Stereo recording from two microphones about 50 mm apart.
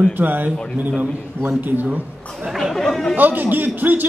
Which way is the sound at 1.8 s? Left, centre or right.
Right.